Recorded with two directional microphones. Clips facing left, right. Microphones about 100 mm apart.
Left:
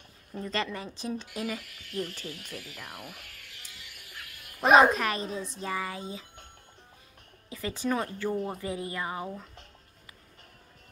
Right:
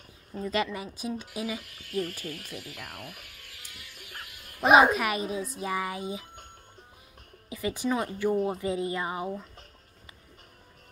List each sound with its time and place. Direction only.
0.4 s speech: 10° right (ahead or behind)
1.8 s speech: 45° right (ahead or behind)
2.7 s speech: centre (ahead or behind)
4.6 s speech: 5° right (ahead or behind)
7.4 s a woman's voice: 15° right (ahead or behind)